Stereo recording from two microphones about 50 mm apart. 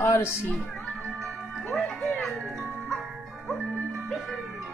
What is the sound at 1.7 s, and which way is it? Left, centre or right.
Music, centre.